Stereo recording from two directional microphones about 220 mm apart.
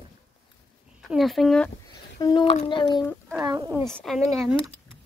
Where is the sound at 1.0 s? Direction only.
Centre (ahead or behind).